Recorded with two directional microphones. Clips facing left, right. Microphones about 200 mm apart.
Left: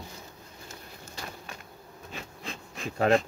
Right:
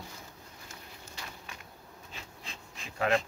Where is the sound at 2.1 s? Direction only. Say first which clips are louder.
Left 8 dB; 55° left (ahead or behind).